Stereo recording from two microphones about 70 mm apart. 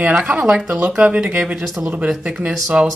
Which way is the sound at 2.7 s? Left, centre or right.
Centre.